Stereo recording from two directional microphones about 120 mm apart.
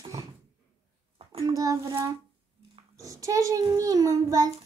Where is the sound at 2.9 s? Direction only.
25° right (ahead or behind).